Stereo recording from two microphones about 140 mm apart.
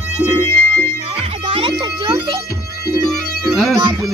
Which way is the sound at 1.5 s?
40° right (ahead or behind).